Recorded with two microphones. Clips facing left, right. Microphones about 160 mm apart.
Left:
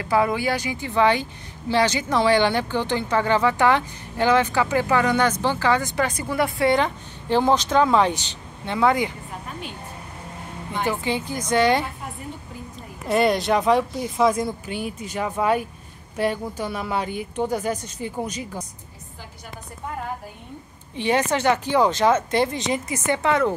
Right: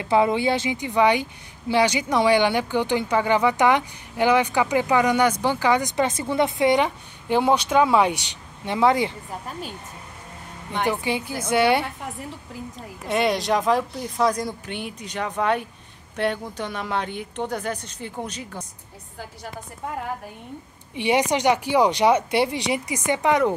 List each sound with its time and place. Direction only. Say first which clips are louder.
0.0 s speech: right 2 dB; 25° right (ahead or behind)
10.8 s speech: right 1 dB; 15° right (ahead or behind)
13.1 s a woman's voice: left 2 dB; centre (ahead or behind)
20.9 s speech: right 1 dB; 15° right (ahead or behind)